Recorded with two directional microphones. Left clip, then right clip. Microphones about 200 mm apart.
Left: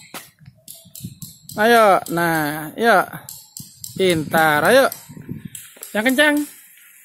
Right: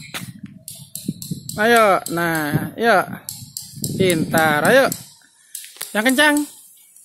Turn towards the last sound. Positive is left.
turn(degrees=-10)  # may be behind; listen again after turning